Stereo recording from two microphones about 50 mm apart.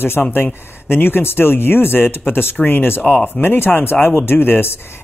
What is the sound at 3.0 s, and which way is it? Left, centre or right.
Speech, left.